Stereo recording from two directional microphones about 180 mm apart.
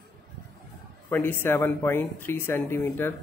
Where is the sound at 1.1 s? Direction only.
10° left (ahead or behind).